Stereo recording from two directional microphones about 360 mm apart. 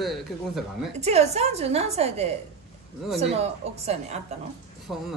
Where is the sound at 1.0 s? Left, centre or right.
Centre.